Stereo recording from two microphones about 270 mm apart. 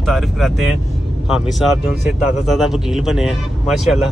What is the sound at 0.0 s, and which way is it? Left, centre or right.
Speech, centre.